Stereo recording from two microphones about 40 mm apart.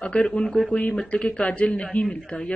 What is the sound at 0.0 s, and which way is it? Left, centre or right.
Speech, left.